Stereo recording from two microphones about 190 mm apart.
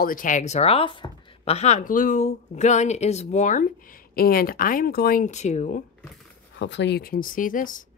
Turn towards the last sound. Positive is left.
turn(degrees=45)  # may be behind; listen again after turning